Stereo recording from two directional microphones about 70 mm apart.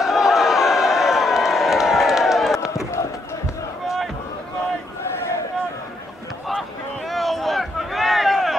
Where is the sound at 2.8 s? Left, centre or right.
Left.